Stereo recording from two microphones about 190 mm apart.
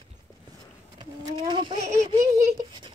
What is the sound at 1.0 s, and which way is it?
Speech, 25° right (ahead or behind).